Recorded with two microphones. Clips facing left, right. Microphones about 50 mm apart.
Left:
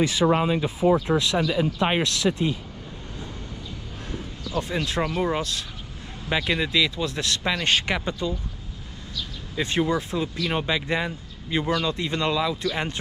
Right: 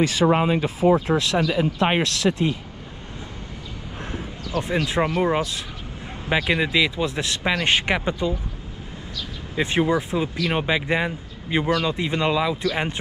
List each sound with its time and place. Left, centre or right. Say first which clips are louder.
0.0 s speech: right 2 dB; right
4.1 s speech: right 1 dB; right
9.6 s speech: right 3 dB; centre